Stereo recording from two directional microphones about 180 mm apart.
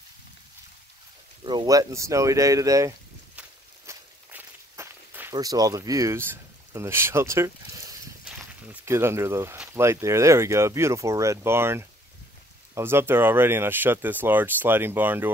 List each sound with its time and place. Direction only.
1.4 s speech: 25° right (ahead or behind)
3.3 s walk: 10° right (ahead or behind)
8.6 s speech: 15° right (ahead or behind)